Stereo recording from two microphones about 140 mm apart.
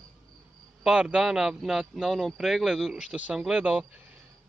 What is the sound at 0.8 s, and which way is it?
Speech, 5° right (ahead or behind).